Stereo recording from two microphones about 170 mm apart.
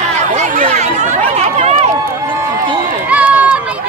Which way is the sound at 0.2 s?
45° right (ahead or behind).